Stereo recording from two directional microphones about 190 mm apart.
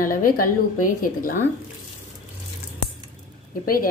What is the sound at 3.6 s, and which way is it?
Speech, 50° left (ahead or behind).